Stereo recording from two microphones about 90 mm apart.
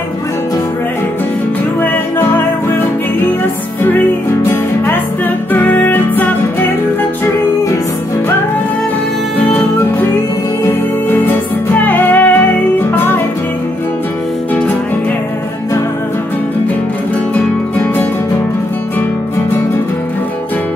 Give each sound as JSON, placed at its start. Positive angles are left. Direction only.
{"t": 1.8, "sound": "music", "side_deg": 20}
{"t": 3.8, "sound": "music", "side_deg": 25}
{"t": 9.5, "sound": "music", "side_deg": 20}
{"t": 17.3, "sound": "music", "side_deg": 15}